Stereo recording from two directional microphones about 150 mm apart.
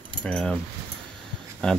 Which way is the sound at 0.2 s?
5° left (ahead or behind).